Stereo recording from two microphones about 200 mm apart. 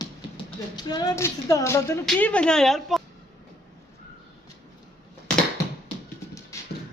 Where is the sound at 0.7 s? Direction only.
20° left (ahead or behind); by 3.0 s centre (ahead or behind).